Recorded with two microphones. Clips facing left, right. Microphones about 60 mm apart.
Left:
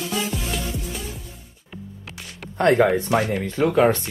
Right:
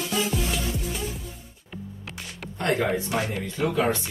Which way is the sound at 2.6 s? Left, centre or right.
Left.